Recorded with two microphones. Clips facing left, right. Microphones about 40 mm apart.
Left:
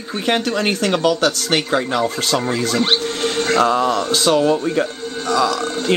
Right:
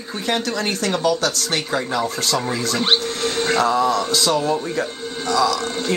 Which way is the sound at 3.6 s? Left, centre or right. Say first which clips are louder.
Left 2 dB; left.